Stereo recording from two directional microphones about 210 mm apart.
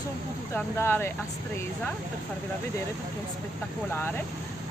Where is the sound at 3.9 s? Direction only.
10° left (ahead or behind).